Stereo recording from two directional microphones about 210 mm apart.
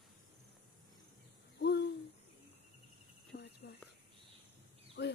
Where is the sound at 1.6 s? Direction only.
50° left (ahead or behind).